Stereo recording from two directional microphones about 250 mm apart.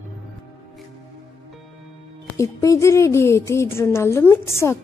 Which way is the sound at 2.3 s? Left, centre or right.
Centre.